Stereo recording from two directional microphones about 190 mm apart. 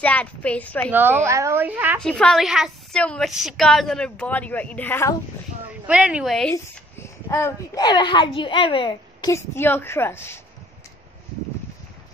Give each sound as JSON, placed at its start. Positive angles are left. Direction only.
{"t": 0.0, "sound": "a child's voice", "side_deg": 5}
{"t": 0.9, "sound": "speech", "side_deg": -10}
{"t": 2.0, "sound": "a woman's voice", "side_deg": 5}
{"t": 5.9, "sound": "a woman's voice", "side_deg": -5}
{"t": 6.5, "sound": "a child's voice", "side_deg": 15}